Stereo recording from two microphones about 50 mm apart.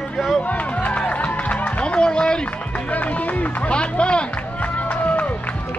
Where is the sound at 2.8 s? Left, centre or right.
Left.